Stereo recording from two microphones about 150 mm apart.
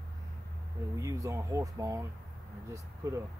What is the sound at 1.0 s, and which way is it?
Speech, 20° right (ahead or behind).